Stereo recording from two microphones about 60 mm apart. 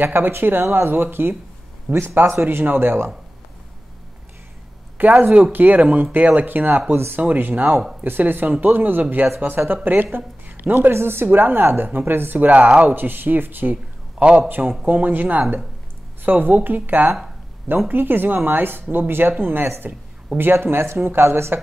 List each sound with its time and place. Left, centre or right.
0.0 s speech: right
5.2 s speech: right
7.7 s speech: centre
8.0 s speech: right
10.1 s a sound: right
10.9 s speech: right
14.6 s speech: centre
14.9 s speech: right